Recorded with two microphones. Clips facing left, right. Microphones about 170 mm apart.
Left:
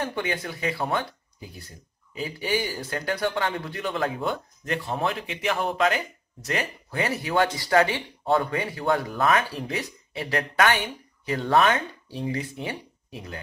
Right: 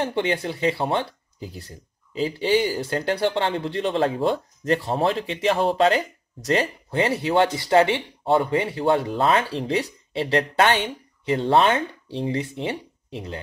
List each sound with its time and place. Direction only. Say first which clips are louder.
0.0 s speech: right 5 dB; 25° right (ahead or behind)